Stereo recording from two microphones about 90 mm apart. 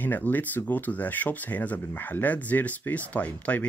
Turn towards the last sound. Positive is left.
turn(degrees=15)  # may be behind; listen again after turning